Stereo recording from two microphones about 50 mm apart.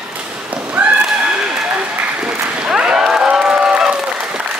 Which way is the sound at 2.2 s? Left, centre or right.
Centre.